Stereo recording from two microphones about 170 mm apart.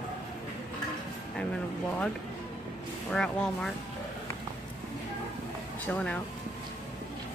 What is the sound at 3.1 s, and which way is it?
Speech, 5° left (ahead or behind).